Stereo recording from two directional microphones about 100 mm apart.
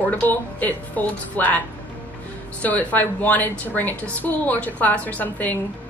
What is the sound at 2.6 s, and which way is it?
A woman's voice, 15° left (ahead or behind).